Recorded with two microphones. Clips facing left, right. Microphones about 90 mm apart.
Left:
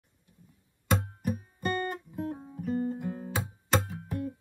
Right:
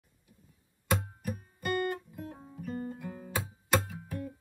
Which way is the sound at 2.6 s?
30° left (ahead or behind).